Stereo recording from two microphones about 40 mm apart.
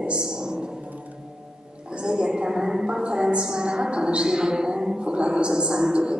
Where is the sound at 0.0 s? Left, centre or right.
Right.